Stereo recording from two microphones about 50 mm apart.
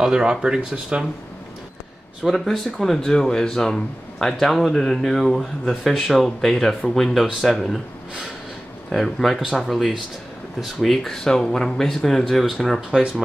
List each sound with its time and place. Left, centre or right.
0.0 s speech: centre
2.2 s speech: centre
8.9 s speech: centre
9.4 s speech: centre
9.7 s speech: centre
12.9 s speech: centre